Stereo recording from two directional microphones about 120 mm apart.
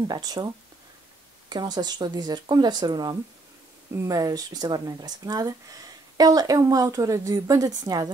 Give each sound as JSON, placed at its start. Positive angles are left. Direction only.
{"t": 0.1, "sound": "speech", "side_deg": -35}
{"t": 1.5, "sound": "speech", "side_deg": -35}
{"t": 3.9, "sound": "speech", "side_deg": -25}